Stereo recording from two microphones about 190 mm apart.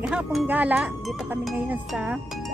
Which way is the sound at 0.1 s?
5° right (ahead or behind).